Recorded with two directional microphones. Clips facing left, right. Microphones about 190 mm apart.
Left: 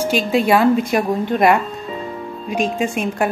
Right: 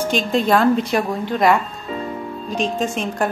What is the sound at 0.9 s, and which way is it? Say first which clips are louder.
Speech: left 3 dB; 20° left (ahead or behind).